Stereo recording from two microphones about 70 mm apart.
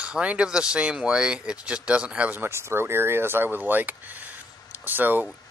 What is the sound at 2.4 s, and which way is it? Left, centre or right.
A man's voice, right.